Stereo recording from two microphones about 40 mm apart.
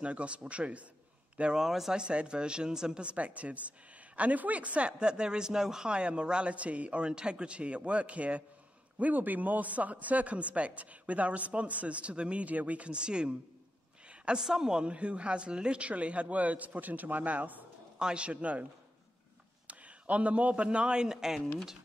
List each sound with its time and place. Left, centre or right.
0.0 s speech: right
1.7 s speech: centre
2.0 s a man's voice: right
5.9 s a man's voice: right
12.9 s a man's voice: right
14.0 s a sound: right
14.4 s a woman's voice: centre
14.9 s speech: right
17.9 s speech: right
19.7 s a man's voice: right; by 21.5 s centre